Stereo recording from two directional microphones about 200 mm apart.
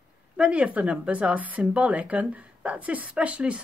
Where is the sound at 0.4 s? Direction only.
5° right (ahead or behind).